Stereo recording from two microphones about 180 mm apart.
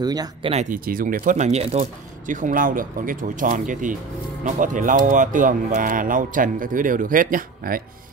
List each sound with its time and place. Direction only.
0.0 s speech: 20° right (ahead or behind)
0.5 s speech: 40° right (ahead or behind)
0.7 s speech: 55° right (ahead or behind)